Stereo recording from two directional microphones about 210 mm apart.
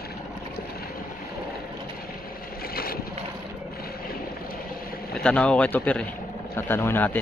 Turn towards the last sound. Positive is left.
turn(degrees=10)  # may be behind; listen again after turning